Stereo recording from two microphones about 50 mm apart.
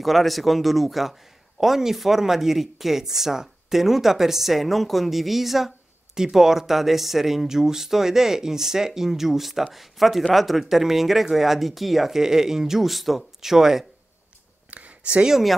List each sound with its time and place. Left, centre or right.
0.0 s speech: centre
14.7 s a sound: right
15.2 s speech: centre